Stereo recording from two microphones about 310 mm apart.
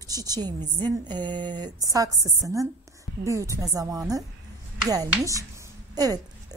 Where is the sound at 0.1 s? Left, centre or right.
Centre.